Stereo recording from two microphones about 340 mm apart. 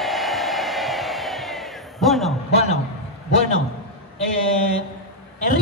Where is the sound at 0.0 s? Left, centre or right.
Centre.